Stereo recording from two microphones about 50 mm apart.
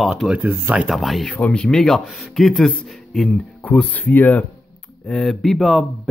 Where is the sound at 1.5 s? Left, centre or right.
Centre.